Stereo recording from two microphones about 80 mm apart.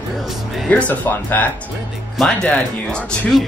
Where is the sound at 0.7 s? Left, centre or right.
Centre.